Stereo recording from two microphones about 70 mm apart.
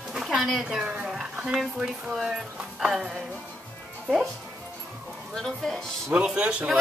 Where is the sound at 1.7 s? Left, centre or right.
Centre.